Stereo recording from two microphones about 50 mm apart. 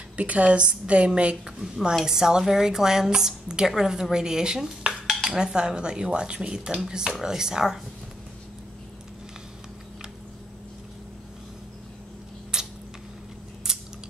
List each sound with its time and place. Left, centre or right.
0.2 s a woman's voice: right
12.5 s a sound: centre
13.7 s scissors: centre